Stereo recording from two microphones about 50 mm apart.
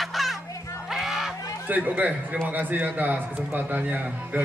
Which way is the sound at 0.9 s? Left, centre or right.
Centre.